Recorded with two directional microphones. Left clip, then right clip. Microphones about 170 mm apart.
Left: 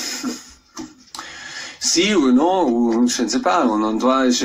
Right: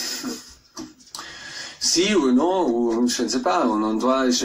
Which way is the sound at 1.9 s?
30° left (ahead or behind).